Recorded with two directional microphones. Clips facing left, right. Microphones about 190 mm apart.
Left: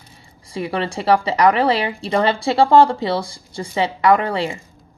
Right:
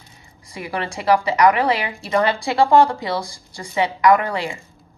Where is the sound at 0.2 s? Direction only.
30° left (ahead or behind).